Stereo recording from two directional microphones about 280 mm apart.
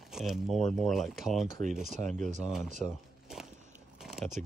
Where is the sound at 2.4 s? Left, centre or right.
Centre.